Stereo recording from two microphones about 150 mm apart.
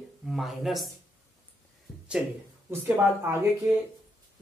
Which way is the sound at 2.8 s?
15° right (ahead or behind).